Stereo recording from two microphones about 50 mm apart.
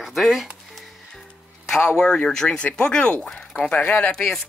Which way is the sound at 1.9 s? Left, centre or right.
Centre.